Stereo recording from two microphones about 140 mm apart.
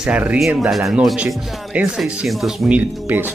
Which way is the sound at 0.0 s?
10° right (ahead or behind).